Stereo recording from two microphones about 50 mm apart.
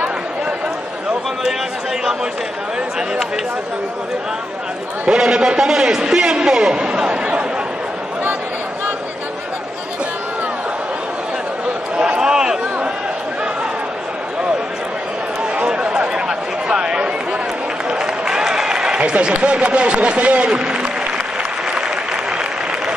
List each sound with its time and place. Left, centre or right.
5.0 s a man's voice: centre
12.0 s a sound: centre
15.5 s chatter: centre
17.8 s applause: centre